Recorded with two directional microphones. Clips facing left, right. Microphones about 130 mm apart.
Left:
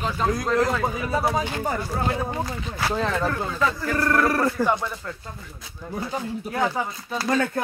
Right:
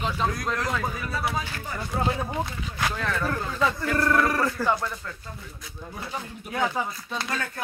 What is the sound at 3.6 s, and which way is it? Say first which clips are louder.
Speech: right 1 dB; centre (ahead or behind).